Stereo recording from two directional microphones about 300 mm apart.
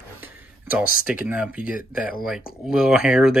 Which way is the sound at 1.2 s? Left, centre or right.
Centre.